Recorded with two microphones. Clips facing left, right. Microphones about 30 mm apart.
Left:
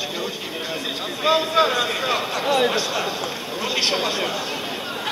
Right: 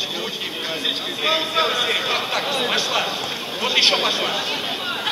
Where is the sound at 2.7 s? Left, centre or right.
Right.